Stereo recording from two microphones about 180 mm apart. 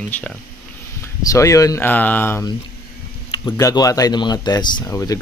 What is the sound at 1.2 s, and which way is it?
A man's voice, 15° left (ahead or behind).